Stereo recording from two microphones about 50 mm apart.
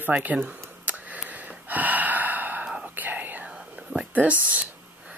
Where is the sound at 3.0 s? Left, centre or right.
Right.